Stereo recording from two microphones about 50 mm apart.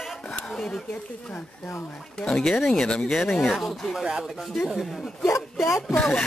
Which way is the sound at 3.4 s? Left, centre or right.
Centre.